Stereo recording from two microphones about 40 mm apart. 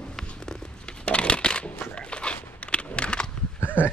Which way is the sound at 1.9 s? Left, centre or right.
Left.